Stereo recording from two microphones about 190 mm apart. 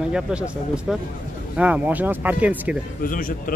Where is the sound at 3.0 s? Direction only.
45° left (ahead or behind).